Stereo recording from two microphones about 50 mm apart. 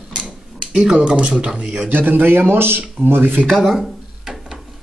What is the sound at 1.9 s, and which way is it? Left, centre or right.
Speech, right.